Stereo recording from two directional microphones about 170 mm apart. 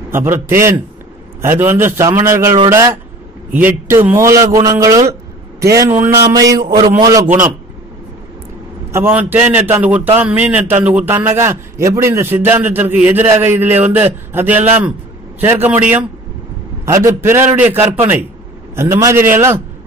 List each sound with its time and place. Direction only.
0.1 s a man's voice: 15° right (ahead or behind)
8.9 s a man's voice: 10° right (ahead or behind)